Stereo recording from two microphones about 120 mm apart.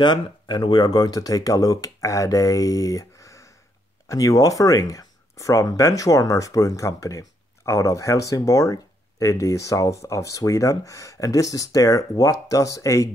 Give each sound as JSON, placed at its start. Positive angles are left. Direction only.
{"t": 0.0, "sound": "speech", "side_deg": 40}